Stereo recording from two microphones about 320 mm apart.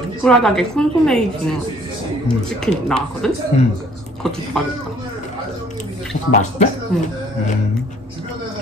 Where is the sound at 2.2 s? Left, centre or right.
Centre.